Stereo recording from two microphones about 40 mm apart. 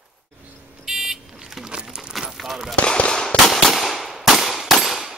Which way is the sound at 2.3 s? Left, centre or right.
Centre.